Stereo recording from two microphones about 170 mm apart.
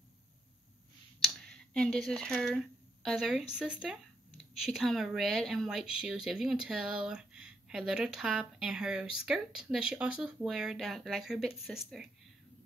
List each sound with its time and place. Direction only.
1.2 s speech: 5° left (ahead or behind)